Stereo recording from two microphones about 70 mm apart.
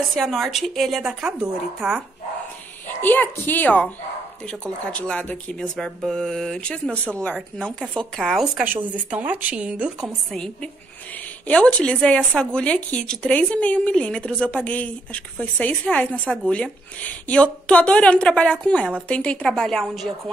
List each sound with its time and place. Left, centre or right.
0.1 s a woman's voice: centre
2.9 s a woman's voice: left
4.5 s speech: centre
5.6 s a woman's voice: centre
6.7 s speech: centre
8.0 s a woman's voice: centre
8.6 s a woman's voice: right
10.3 s speech: centre